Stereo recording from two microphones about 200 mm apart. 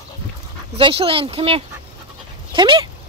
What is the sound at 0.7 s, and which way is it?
Speech, 25° right (ahead or behind).